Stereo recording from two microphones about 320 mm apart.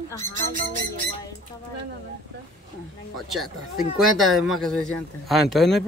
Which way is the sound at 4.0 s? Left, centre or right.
Centre.